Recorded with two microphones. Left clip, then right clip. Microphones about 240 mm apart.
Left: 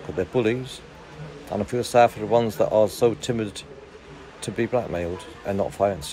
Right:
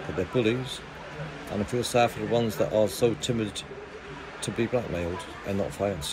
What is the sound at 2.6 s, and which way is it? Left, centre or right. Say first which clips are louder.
Speech: left 4 dB; left.